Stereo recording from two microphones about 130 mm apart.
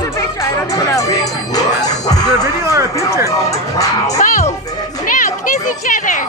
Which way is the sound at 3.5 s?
25° left (ahead or behind).